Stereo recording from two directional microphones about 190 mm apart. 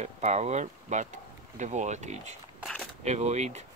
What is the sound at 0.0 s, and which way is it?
Speech, 35° right (ahead or behind).